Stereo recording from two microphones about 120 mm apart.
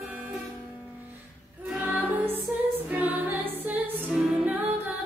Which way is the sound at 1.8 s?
15° right (ahead or behind).